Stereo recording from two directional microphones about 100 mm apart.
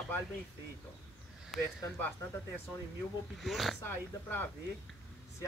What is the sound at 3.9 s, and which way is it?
Speech, 20° left (ahead or behind).